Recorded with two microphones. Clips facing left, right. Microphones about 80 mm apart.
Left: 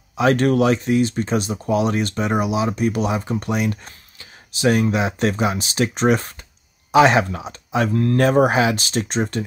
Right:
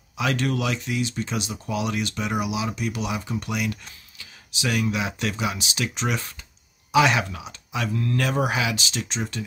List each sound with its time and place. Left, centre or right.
0.1 s speech: left